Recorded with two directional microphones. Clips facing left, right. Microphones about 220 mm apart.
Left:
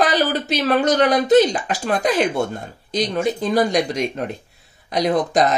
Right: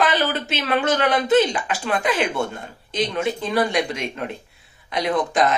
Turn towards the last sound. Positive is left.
turn(degrees=40)  # may be behind; listen again after turning